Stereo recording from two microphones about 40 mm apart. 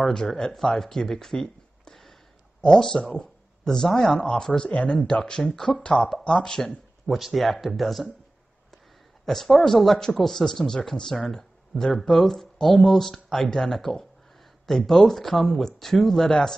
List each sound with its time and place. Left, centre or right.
0.0 s speech: centre
0.7 s a sound: centre
2.6 s speech: centre
4.6 s speech: left
6.6 s speech: centre
9.2 s speech: centre